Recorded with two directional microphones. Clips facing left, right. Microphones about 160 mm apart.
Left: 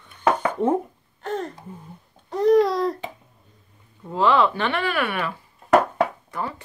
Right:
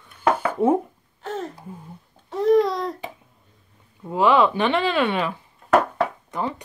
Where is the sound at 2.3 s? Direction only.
Centre (ahead or behind).